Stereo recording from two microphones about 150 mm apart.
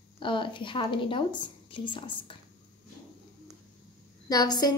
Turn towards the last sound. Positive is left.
turn(degrees=25)  # may be behind; listen again after turning